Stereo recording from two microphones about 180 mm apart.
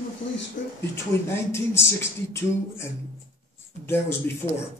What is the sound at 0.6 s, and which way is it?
Speech, 45° left (ahead or behind).